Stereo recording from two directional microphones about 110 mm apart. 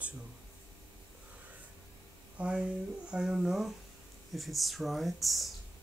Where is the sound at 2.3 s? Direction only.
10° right (ahead or behind).